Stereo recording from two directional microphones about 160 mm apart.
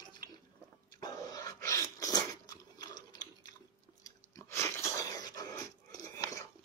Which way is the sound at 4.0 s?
20° left (ahead or behind).